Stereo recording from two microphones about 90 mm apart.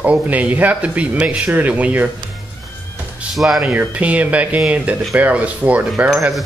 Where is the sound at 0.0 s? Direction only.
15° right (ahead or behind).